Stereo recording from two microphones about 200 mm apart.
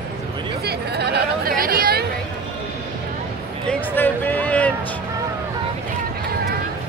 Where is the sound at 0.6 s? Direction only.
55° right (ahead or behind).